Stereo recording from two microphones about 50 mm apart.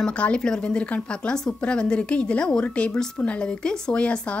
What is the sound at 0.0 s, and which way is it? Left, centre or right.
A woman's voice, left.